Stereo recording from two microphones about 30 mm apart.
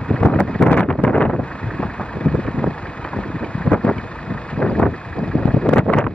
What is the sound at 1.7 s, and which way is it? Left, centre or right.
Vehicle, left.